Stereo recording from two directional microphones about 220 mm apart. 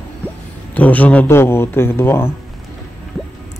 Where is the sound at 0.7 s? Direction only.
5° left (ahead or behind).